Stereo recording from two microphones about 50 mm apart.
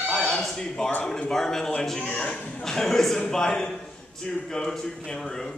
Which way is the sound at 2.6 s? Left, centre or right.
Centre.